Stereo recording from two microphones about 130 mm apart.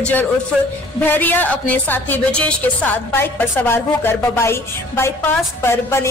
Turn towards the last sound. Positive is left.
turn(degrees=20)  # may be behind; listen again after turning